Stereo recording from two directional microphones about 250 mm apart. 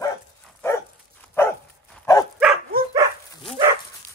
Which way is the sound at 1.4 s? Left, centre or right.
Centre.